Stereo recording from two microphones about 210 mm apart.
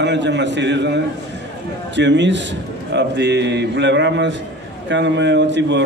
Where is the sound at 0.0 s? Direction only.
55° right (ahead or behind).